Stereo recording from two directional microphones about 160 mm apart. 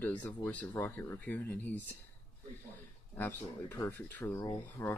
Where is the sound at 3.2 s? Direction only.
10° left (ahead or behind).